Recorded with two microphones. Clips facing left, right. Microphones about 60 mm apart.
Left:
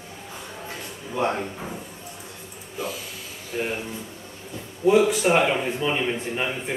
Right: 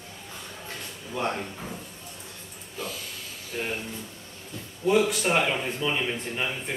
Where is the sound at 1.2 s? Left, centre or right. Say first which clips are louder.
Left 5 dB; centre.